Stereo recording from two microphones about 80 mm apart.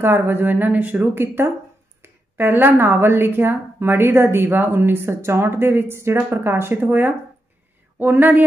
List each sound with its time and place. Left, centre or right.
0.0 s a woman's voice: right